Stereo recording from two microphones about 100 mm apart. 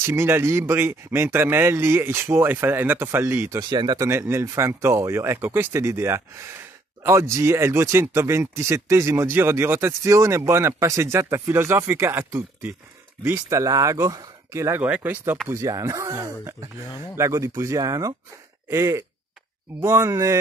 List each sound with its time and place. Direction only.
0.0 s speech: 25° right (ahead or behind)
3.5 s speech: 45° right (ahead or behind)
4.1 s speech: 25° right (ahead or behind)
14.8 s speech: 15° right (ahead or behind)
15.4 s speech: 30° right (ahead or behind)